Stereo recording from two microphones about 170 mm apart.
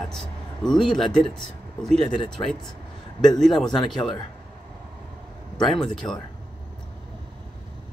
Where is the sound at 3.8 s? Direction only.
25° left (ahead or behind).